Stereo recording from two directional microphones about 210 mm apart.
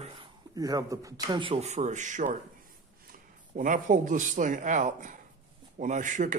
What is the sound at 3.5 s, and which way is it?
Speech, 40° right (ahead or behind).